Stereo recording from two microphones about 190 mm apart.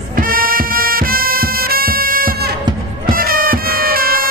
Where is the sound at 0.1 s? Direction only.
50° right (ahead or behind).